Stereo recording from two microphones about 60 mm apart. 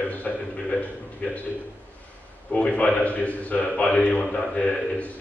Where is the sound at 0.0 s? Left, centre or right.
Left.